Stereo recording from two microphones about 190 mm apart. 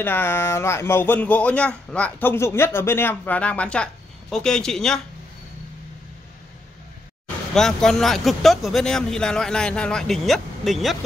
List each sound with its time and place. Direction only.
0.0 s speech: 10° left (ahead or behind)
7.5 s speech: 5° left (ahead or behind)